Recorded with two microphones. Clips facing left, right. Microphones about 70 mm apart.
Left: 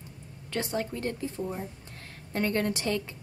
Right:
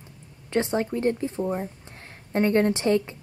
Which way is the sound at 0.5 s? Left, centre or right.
Right.